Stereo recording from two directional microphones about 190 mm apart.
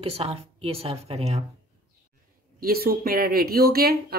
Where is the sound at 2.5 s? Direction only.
50° right (ahead or behind).